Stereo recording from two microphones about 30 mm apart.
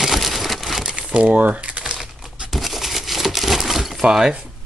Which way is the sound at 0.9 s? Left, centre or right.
Right.